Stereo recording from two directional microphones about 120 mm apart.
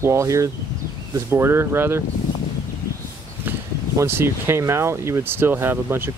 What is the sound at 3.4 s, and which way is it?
Speech, 20° right (ahead or behind).